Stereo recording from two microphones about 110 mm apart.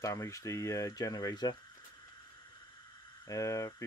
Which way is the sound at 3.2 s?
30° left (ahead or behind).